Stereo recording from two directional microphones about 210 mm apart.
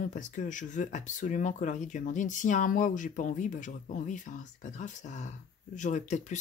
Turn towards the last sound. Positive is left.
turn(degrees=35)  # may be behind; listen again after turning